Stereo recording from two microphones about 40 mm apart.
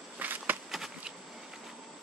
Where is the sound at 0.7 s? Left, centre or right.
Centre.